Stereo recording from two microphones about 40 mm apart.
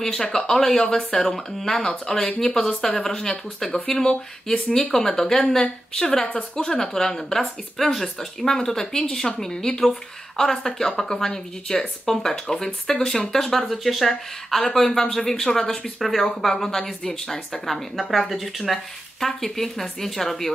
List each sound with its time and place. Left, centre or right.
0.0 s a woman's voice: centre
6.6 s speech: centre
11.7 s a woman's voice: left
13.7 s speech: centre